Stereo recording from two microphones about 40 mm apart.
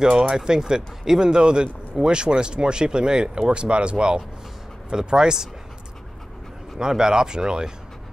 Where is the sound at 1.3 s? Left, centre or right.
Right.